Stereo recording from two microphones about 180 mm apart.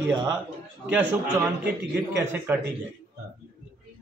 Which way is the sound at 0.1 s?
25° right (ahead or behind).